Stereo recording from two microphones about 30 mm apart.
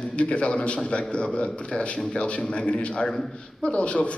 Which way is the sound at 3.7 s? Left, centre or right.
Left.